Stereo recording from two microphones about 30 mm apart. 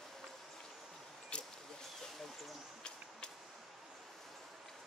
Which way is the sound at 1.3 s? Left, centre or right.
Left.